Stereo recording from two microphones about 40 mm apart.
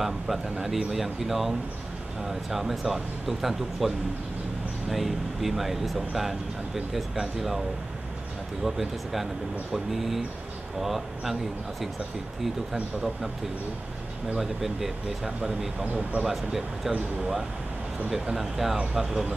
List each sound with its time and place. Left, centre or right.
0.0 s speech: centre
8.6 s speech: centre
14.4 s speech: centre
15.8 s speech: right
16.2 s speech: centre
18.1 s speech: centre